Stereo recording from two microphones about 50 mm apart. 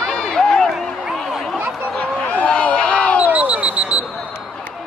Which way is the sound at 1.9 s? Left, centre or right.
Left.